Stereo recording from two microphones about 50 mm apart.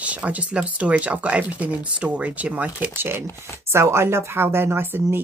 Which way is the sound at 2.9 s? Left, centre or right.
Right.